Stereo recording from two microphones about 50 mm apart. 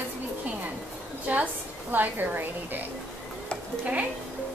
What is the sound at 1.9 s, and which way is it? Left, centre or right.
Speech, right.